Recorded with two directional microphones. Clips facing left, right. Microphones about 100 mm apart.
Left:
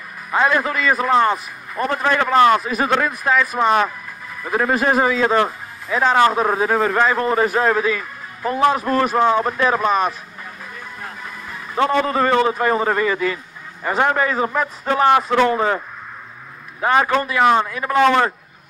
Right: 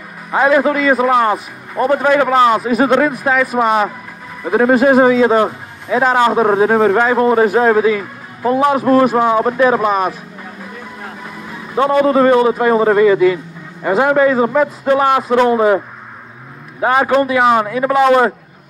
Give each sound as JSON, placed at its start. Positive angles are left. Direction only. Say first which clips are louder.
{"t": 0.3, "sound": "a man's voice", "louder": "right 6 dB", "side_deg": -15}
{"t": 4.6, "sound": "a man's voice", "louder": "right 8 dB", "side_deg": -25}
{"t": 12.0, "sound": "a man's voice", "louder": "right 10 dB", "side_deg": -25}
{"t": 16.8, "sound": "a man's voice", "louder": "right 4 dB", "side_deg": -15}